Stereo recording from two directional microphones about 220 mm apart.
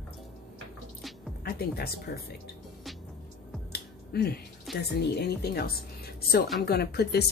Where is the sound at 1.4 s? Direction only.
45° left (ahead or behind).